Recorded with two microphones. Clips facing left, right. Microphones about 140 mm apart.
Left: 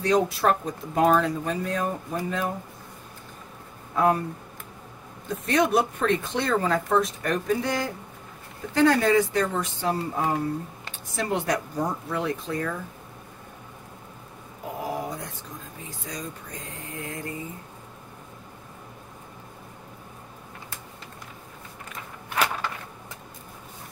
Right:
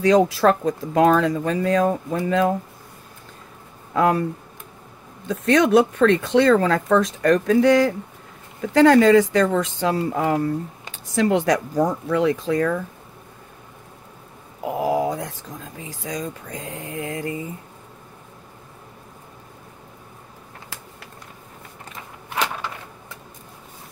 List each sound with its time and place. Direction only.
0.0 s speech: 90° right
3.9 s a man's voice: 90° right
5.3 s speech: 90° right
14.8 s speech: 90° right